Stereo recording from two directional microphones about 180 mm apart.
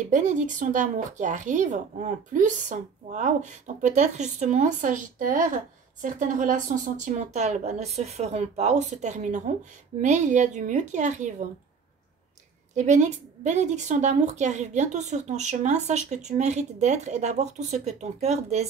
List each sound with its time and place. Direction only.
0.1 s a woman's voice: 45° right (ahead or behind)
12.7 s a woman's voice: 40° right (ahead or behind)